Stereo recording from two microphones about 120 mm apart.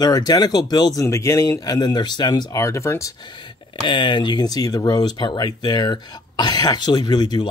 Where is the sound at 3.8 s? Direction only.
40° left (ahead or behind).